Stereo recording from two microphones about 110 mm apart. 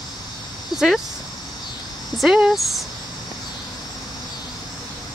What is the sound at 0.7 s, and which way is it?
Speech, 5° right (ahead or behind).